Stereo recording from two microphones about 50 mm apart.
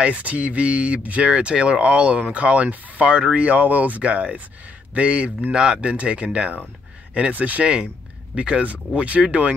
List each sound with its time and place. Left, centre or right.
0.0 s speech: right
5.5 s speech: centre